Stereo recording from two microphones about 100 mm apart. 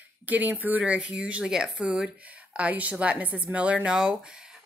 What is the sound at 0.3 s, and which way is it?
A woman's voice, 15° right (ahead or behind).